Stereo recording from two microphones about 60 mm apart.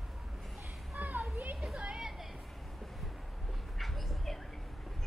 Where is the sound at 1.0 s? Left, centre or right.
Right.